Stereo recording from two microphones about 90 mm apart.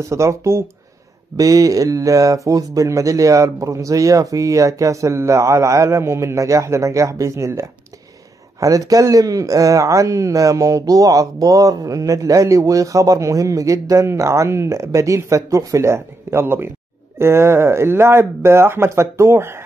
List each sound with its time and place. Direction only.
0.1 s speech: 35° right (ahead or behind)